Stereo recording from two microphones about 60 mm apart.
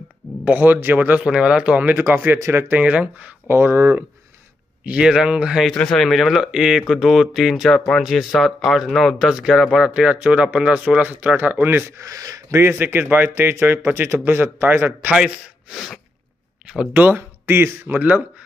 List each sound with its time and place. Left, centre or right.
0.5 s speech: right
1.2 s speech: centre
2.0 s speech: right
2.8 s speech: right
3.4 s speech: right
4.8 s speech: centre
5.9 s speech: centre
9.8 s speech: centre; by 11.9 s right
12.0 s speech: right
12.4 s speech: right
15.7 s speech: centre
16.6 s a sound: centre
16.9 s speech: right